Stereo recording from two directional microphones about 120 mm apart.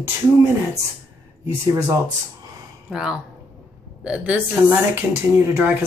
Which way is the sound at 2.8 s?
5° right (ahead or behind).